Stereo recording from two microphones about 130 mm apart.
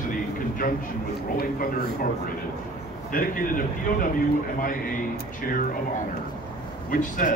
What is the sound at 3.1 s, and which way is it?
A man's voice, 90° left.